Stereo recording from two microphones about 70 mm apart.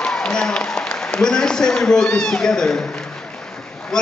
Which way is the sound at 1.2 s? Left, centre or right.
Centre.